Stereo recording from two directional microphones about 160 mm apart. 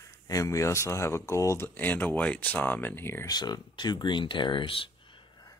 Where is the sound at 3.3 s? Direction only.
25° left (ahead or behind).